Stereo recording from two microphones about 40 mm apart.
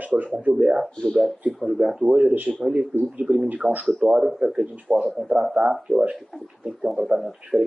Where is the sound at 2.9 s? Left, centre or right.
Centre.